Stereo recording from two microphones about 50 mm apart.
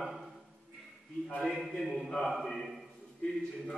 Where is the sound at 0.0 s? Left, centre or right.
Centre.